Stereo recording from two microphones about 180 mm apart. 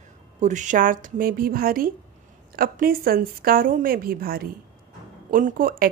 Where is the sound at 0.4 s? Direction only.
45° right (ahead or behind).